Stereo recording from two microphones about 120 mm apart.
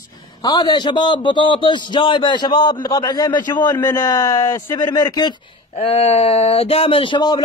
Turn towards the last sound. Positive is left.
turn(degrees=40)  # may be behind; listen again after turning